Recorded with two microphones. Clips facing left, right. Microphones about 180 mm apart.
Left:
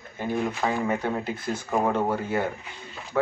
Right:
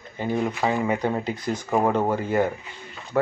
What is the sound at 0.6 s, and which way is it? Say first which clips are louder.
Speech: right 4 dB; 10° right (ahead or behind).